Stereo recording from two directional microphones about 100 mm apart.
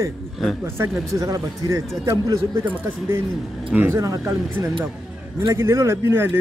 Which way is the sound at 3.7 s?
20° right (ahead or behind).